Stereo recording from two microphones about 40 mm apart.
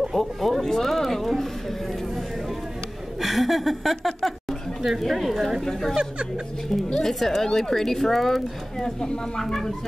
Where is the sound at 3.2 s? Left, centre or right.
Centre.